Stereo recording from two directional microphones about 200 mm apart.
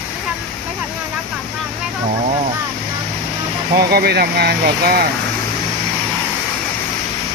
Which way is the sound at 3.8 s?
50° right (ahead or behind).